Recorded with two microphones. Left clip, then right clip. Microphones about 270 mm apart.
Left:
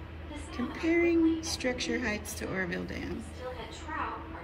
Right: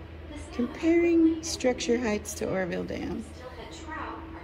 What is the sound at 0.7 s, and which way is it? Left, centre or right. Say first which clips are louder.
A woman's voice: right 4 dB; centre.